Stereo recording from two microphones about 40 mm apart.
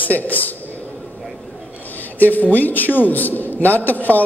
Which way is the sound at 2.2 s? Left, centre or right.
Left.